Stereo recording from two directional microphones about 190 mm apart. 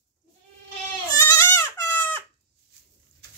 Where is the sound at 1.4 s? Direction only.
15° left (ahead or behind).